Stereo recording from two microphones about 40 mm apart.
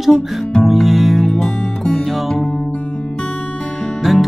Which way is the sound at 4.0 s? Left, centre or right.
Centre.